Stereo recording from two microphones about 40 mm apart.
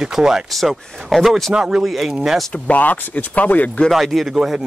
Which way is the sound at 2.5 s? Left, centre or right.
Left.